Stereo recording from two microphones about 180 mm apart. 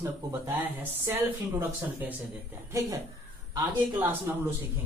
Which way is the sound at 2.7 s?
15° right (ahead or behind).